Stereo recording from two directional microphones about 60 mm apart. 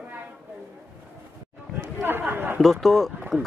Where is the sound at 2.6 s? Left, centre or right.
Centre.